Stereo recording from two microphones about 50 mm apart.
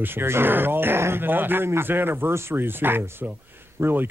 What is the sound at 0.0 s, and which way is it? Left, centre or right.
Speech, right.